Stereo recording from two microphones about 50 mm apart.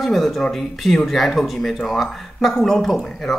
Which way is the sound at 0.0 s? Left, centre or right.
Centre.